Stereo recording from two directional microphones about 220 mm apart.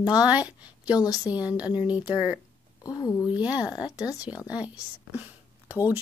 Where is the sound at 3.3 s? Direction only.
5° right (ahead or behind).